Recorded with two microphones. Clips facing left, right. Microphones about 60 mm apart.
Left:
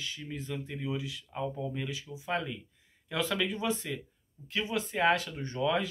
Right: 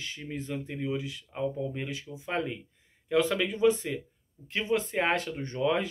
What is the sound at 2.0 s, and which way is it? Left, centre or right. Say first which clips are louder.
Speech: right 1 dB; right.